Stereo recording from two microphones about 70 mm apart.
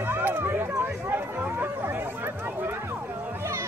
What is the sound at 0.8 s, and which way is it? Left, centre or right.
Chatter, right.